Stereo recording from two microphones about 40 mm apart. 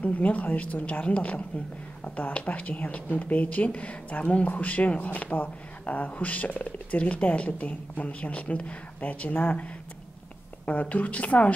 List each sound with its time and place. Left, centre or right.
0.0 s speech: left
1.0 s speech: left
9.3 s speech: left
10.6 s speech: left